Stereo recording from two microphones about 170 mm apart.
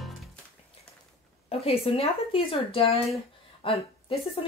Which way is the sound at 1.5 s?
35° left (ahead or behind).